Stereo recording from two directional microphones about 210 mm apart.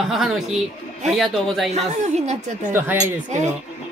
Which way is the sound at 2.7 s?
10° right (ahead or behind).